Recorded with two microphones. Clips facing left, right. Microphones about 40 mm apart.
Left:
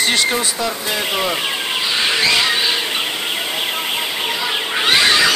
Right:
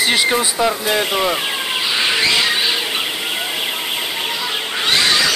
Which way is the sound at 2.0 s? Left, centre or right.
Centre.